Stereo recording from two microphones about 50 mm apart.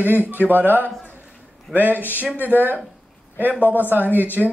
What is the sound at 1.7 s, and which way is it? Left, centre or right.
Speech, right.